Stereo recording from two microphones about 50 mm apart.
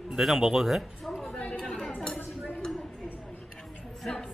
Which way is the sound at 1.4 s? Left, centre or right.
Centre.